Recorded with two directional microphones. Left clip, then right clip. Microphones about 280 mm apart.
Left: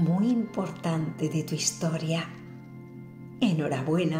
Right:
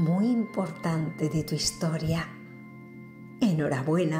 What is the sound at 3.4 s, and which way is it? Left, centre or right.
Speech, right.